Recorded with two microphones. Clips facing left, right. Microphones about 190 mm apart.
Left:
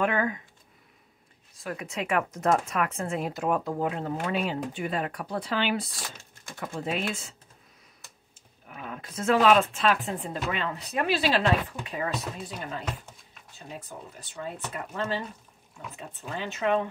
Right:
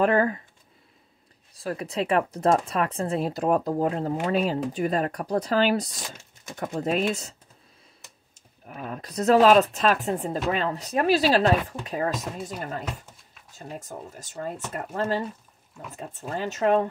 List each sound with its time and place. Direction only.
0.0 s speech: 35° right (ahead or behind)
1.5 s speech: 35° right (ahead or behind)
8.4 s speech: 40° right (ahead or behind)